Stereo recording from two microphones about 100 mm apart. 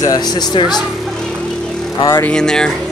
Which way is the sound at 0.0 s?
40° left (ahead or behind).